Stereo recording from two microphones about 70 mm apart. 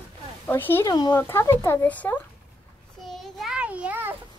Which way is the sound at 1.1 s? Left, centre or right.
Left.